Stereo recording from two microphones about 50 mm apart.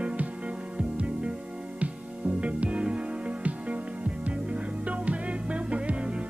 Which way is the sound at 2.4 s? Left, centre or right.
Right.